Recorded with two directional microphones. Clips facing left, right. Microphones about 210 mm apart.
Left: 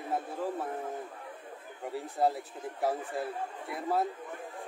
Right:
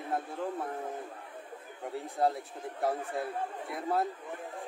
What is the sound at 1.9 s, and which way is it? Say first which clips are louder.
A man's voice: left 1 dB; centre (ahead or behind).